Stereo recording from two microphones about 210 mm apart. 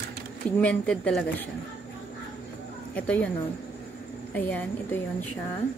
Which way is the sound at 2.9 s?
5° left (ahead or behind).